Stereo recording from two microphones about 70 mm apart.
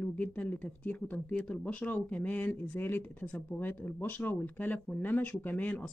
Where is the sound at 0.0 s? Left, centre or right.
Left.